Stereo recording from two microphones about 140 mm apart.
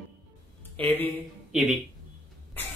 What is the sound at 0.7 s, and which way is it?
Speech, 15° left (ahead or behind).